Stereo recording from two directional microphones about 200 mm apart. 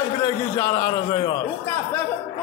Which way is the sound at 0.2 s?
25° left (ahead or behind).